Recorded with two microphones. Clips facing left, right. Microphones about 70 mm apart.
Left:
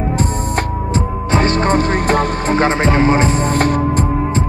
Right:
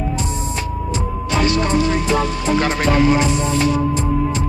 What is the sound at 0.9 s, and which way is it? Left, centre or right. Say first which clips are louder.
Music: left 5 dB; left.